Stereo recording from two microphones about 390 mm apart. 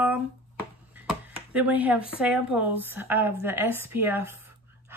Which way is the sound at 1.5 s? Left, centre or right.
Centre.